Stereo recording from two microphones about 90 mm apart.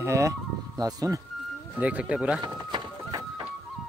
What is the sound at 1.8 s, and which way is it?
Speech, 15° right (ahead or behind).